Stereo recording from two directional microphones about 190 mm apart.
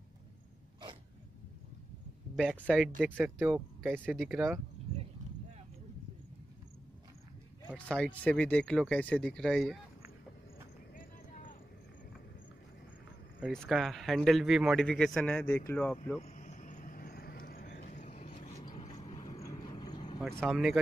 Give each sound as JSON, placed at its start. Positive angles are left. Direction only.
{"t": 2.3, "sound": "a man's voice", "side_deg": -5}
{"t": 7.7, "sound": "a man's voice", "side_deg": 5}
{"t": 13.4, "sound": "a man's voice", "side_deg": 0}
{"t": 16.2, "sound": "vehicle", "side_deg": 35}
{"t": 19.4, "sound": "vehicle", "side_deg": 20}
{"t": 20.2, "sound": "vehicle", "side_deg": -15}
{"t": 20.4, "sound": "a man's voice", "side_deg": 0}